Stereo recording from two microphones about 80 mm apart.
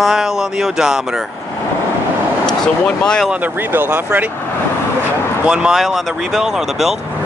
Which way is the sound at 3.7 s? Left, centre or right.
Right.